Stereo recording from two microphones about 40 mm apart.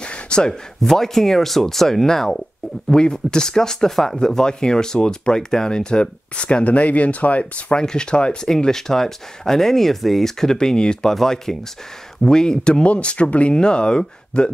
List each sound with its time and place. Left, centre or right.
0.0 s a sound: left
0.8 s speech: centre; by 7.6 s left
7.7 s speech: left
8.5 s speech: centre
12.8 s speech: left